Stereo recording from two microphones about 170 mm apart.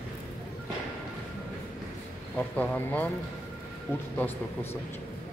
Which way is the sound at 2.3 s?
10° left (ahead or behind).